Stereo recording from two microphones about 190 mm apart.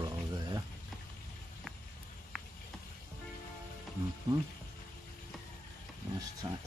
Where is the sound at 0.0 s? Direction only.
20° right (ahead or behind).